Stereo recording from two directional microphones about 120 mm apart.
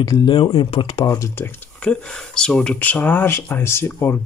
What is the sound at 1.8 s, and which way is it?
Speech, 5° left (ahead or behind).